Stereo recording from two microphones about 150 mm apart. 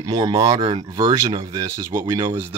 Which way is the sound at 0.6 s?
35° right (ahead or behind).